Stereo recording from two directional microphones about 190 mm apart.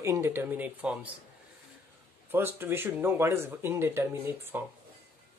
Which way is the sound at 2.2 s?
10° right (ahead or behind).